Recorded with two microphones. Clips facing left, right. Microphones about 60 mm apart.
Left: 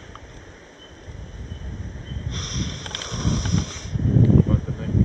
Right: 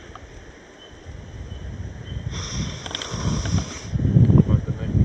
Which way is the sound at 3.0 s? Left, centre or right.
Right.